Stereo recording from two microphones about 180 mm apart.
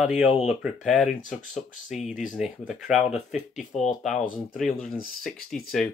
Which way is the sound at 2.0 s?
45° left (ahead or behind).